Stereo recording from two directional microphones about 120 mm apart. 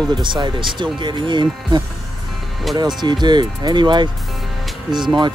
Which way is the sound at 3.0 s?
35° right (ahead or behind).